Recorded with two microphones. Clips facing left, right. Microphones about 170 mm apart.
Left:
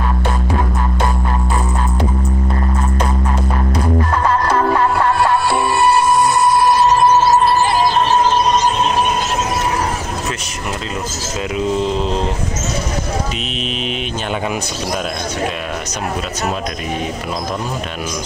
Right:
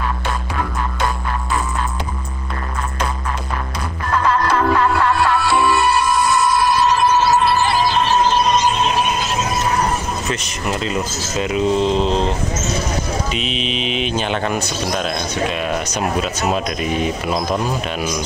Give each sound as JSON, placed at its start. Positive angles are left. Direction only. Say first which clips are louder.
{"t": 4.2, "sound": "music", "louder": "right 2 dB", "side_deg": 40}
{"t": 7.1, "sound": "music", "louder": "left 3 dB", "side_deg": 45}
{"t": 11.5, "sound": "mantra", "louder": "right 2 dB", "side_deg": 5}